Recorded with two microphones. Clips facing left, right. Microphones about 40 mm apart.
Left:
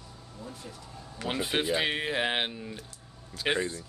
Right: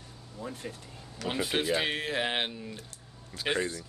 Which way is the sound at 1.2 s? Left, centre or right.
Centre.